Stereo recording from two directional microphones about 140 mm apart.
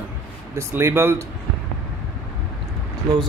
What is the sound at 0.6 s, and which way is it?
Speech, 15° right (ahead or behind).